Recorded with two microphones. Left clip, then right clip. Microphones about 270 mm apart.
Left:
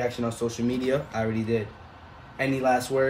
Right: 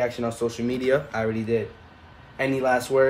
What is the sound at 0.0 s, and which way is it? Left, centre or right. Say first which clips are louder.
Speech: right 3 dB; centre.